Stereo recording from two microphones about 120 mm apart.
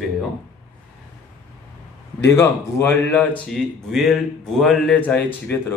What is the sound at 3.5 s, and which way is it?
A man's voice, centre (ahead or behind).